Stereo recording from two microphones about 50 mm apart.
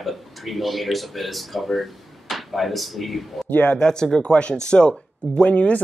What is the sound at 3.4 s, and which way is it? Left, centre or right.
Speech, left.